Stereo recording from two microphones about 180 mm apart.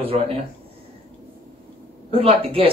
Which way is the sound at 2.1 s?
30° right (ahead or behind).